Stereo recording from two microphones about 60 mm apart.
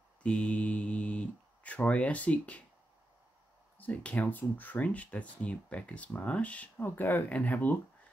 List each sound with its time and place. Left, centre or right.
0.2 s a sound: centre
3.7 s speech: left
6.8 s speech: left